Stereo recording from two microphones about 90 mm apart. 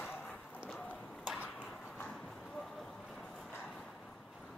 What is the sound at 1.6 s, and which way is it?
Clip-clop, 20° left (ahead or behind).